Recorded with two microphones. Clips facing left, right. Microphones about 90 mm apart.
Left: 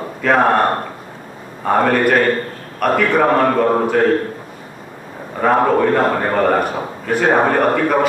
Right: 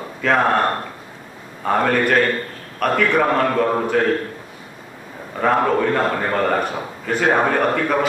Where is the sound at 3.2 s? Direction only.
15° left (ahead or behind).